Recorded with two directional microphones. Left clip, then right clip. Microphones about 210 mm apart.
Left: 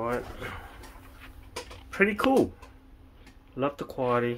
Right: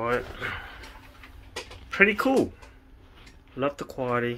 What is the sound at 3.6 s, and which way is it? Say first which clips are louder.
Speech: even; 5° left (ahead or behind).